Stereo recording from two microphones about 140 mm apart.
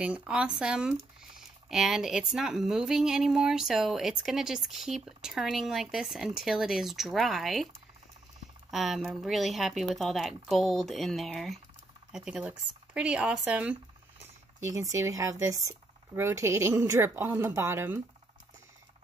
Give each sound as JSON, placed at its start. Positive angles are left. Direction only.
{"t": 0.0, "sound": "speech", "side_deg": -10}
{"t": 8.6, "sound": "speech", "side_deg": 0}
{"t": 14.7, "sound": "speech", "side_deg": -25}